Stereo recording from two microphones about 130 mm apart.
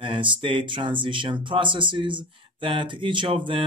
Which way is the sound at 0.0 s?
40° right (ahead or behind).